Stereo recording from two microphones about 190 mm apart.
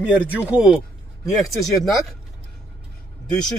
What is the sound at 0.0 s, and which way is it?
Speech, 5° right (ahead or behind).